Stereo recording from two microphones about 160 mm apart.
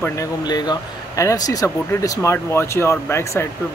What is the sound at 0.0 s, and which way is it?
Speech, 20° left (ahead or behind).